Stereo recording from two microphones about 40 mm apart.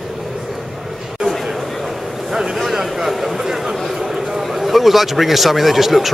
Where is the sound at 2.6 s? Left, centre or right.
Centre.